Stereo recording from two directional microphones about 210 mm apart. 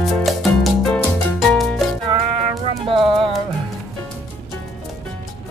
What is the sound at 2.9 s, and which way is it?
Clip-clop, 25° right (ahead or behind).